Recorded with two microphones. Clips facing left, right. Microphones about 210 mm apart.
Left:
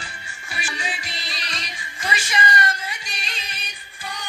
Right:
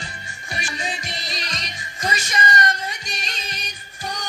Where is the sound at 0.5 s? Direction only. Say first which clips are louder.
Right 2 dB; 40° right (ahead or behind).